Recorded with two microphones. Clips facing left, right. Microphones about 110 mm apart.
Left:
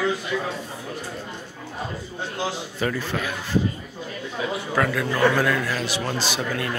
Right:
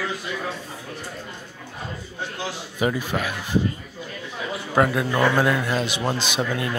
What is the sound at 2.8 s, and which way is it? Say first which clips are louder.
Speech: right 3 dB; 15° right (ahead or behind).